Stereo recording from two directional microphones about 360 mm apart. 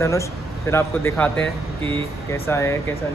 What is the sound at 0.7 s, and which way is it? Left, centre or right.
Speech, centre.